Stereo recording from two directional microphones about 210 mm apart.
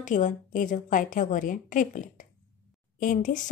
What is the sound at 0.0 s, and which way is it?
Speech, 35° left (ahead or behind).